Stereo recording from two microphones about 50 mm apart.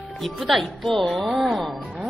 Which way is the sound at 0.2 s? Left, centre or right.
Centre.